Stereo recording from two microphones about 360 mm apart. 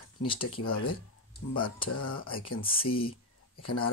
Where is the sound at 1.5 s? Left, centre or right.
Centre.